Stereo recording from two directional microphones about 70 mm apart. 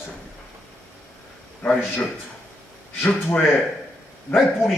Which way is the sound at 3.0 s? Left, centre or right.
Left.